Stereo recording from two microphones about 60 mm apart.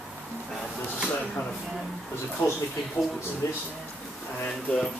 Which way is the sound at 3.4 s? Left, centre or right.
Left.